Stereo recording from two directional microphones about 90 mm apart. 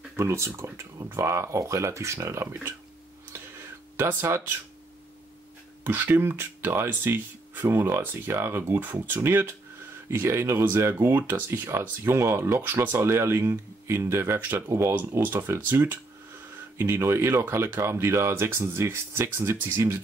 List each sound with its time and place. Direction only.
0.1 s speech: 30° right (ahead or behind)
3.3 s a sound: 30° right (ahead or behind)
3.9 s speech: 25° right (ahead or behind)
5.9 s speech: 25° right (ahead or behind)